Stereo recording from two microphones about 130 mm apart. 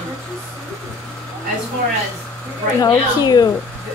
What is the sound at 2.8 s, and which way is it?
Speech, 30° left (ahead or behind).